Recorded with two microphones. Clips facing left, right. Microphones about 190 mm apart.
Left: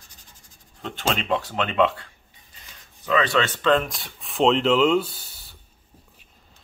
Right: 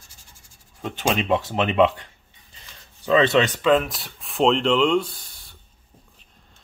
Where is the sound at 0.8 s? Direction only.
15° right (ahead or behind).